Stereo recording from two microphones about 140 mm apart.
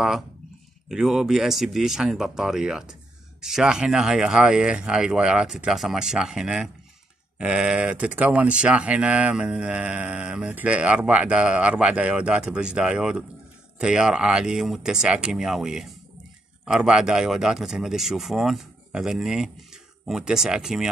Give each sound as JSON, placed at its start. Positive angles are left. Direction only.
{"t": 0.8, "sound": "speech", "side_deg": -5}